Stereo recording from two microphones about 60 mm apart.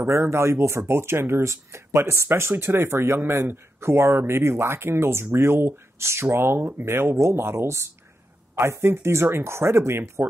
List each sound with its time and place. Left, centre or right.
0.1 s speech: right